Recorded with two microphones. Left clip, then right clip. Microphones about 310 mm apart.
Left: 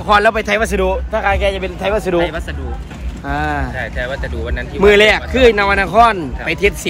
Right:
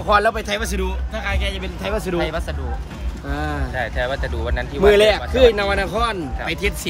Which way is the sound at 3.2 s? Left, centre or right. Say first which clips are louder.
Left 8 dB; centre.